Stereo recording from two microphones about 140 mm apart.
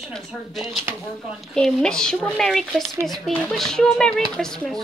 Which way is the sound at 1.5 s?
5° left (ahead or behind).